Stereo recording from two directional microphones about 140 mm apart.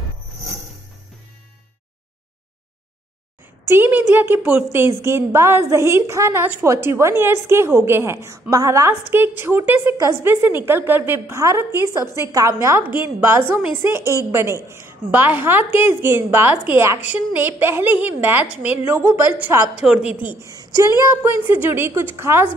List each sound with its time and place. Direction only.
3.6 s a woman's voice: 15° right (ahead or behind)
20.3 s a woman's voice: 25° right (ahead or behind)